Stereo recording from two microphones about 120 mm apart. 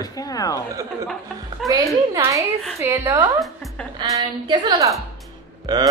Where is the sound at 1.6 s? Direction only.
30° right (ahead or behind).